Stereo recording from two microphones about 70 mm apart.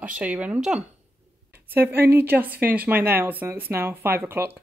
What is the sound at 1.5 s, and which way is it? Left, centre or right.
A woman's voice, right.